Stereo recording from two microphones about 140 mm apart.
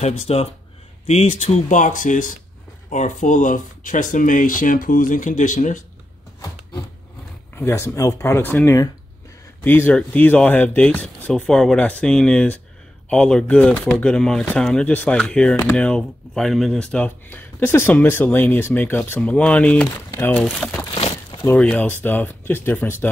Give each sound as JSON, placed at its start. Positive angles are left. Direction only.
{"t": 0.0, "sound": "speech", "side_deg": 45}
{"t": 7.5, "sound": "speech", "side_deg": 20}